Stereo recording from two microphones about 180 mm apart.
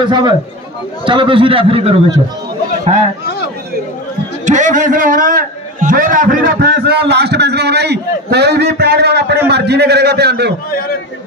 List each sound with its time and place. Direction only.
0.0 s a man's voice: 25° right (ahead or behind)
4.5 s a man's voice: 45° right (ahead or behind); by 10.5 s 65° right (ahead or behind)